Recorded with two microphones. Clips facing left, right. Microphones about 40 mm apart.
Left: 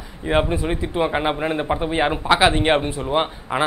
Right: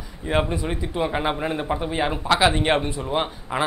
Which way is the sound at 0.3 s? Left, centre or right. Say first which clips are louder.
Left 3 dB; centre.